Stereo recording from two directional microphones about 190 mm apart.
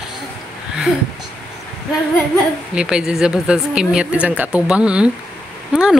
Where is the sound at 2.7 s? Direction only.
5° right (ahead or behind).